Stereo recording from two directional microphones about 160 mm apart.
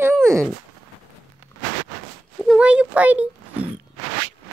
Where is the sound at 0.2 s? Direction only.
20° right (ahead or behind).